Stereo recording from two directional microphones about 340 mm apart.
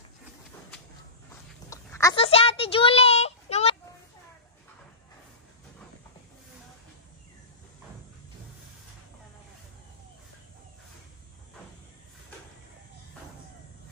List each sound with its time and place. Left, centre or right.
1.7 s a child's voice: centre